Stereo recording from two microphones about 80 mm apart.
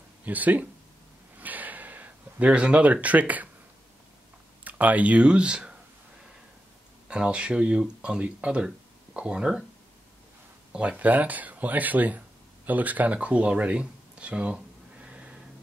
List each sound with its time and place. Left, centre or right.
0.2 s speech: right
1.4 s a sound: right
4.6 s speech: centre
7.1 s speech: centre
10.7 s speech: centre